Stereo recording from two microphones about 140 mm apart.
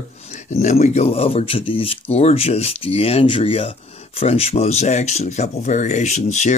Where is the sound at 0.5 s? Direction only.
50° left (ahead or behind).